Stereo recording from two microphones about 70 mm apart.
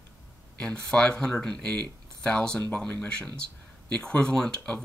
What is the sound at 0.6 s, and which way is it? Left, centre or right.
Speech, centre.